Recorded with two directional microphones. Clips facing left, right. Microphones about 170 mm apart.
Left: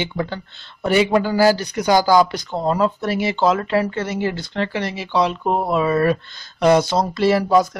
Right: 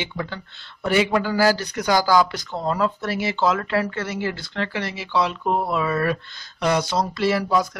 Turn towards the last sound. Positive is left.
turn(degrees=25)  # may be behind; listen again after turning